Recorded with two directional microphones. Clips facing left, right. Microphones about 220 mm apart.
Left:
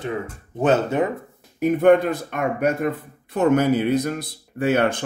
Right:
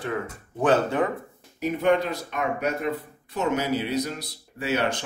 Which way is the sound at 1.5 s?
50° left (ahead or behind).